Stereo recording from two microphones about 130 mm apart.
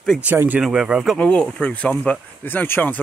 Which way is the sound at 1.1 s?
10° left (ahead or behind).